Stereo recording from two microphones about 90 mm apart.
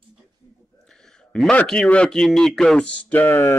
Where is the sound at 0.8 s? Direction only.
5° left (ahead or behind).